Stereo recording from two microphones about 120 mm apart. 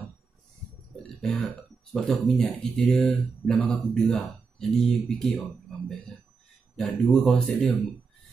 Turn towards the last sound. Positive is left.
turn(degrees=5)  # may be behind; listen again after turning